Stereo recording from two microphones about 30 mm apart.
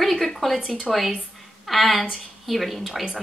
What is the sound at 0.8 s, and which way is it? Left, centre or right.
Speech, centre.